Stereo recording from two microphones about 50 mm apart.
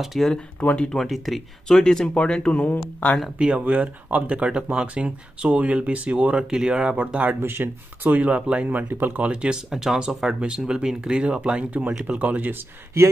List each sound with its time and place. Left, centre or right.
0.0 s speech: centre
0.6 s speech: left
0.9 s speech: centre
1.7 s speech: centre; by 3.2 s left
3.3 s speech: right
6.4 s speech: centre
7.4 s speech: right
9.3 s speech: right
9.7 s speech: centre; by 12.6 s right